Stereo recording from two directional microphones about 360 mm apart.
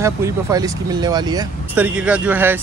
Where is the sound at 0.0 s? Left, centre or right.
Centre.